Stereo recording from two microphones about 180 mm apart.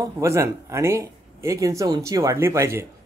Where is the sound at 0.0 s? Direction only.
15° right (ahead or behind).